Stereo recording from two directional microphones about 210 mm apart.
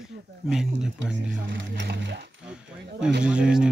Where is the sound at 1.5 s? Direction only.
55° right (ahead or behind).